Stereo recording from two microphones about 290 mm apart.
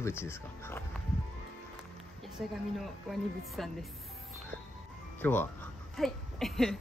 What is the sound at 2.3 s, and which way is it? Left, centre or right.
Speech, centre.